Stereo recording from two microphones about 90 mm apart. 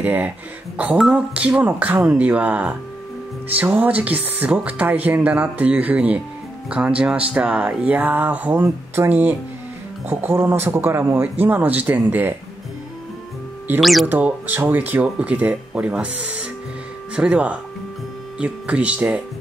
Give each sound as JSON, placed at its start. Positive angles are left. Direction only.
{"t": 0.0, "sound": "speech", "side_deg": -20}
{"t": 0.9, "sound": "speech", "side_deg": -10}
{"t": 13.7, "sound": "speech", "side_deg": 0}
{"t": 14.0, "sound": "speech", "side_deg": -20}